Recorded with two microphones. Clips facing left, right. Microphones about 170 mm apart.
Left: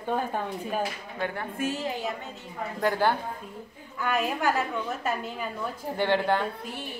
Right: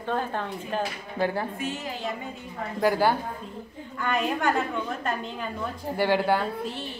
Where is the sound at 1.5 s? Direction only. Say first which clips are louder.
Left 2 dB; 40° left (ahead or behind).